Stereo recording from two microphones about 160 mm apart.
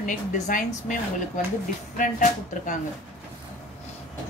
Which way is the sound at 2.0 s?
50° left (ahead or behind).